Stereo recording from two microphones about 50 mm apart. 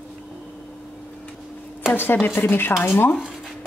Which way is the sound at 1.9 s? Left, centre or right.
Left.